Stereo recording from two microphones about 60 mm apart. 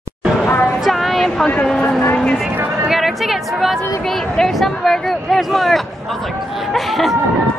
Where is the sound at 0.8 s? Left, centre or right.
Centre.